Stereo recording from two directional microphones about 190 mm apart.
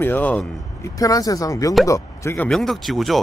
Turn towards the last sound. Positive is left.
turn(degrees=0)  # may be behind; listen again after turning